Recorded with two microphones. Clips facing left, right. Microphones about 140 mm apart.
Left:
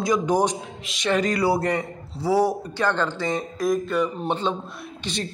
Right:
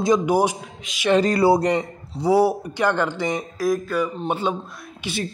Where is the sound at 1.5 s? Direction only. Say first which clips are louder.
Right 3 dB; 20° right (ahead or behind).